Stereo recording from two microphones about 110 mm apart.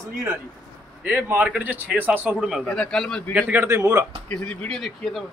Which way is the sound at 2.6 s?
5° left (ahead or behind).